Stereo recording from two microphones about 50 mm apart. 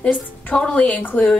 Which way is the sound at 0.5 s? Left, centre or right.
Centre.